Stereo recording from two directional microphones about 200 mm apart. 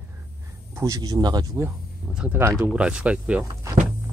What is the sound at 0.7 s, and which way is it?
Speech, 15° right (ahead or behind).